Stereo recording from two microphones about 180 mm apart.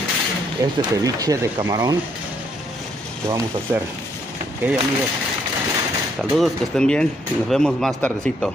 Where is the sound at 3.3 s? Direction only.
15° right (ahead or behind).